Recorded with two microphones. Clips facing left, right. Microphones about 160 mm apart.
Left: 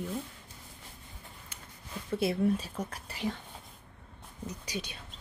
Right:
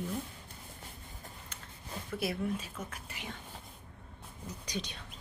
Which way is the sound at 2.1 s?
30° left (ahead or behind).